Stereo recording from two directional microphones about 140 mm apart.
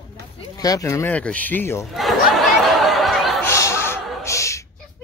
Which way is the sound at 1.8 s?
Centre (ahead or behind).